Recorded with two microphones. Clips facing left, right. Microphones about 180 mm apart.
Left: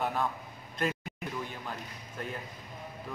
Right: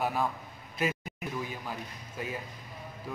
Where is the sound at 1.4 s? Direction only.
5° right (ahead or behind).